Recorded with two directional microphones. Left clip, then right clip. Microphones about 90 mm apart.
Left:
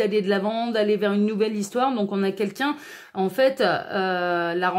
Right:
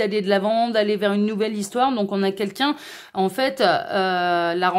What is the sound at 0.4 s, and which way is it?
A woman's voice, 30° right (ahead or behind).